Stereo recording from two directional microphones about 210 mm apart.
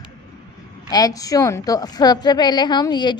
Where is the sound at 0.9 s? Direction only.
15° left (ahead or behind).